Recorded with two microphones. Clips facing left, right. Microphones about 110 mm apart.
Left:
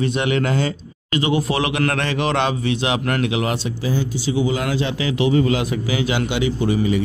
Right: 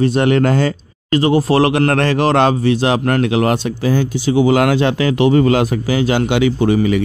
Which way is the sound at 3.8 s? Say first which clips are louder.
Right 6 dB; 65° right (ahead or behind).